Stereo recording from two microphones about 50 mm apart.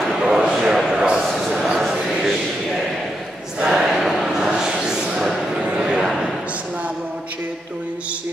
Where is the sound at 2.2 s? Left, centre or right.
Centre.